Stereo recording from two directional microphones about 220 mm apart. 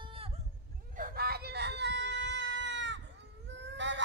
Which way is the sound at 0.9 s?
40° right (ahead or behind).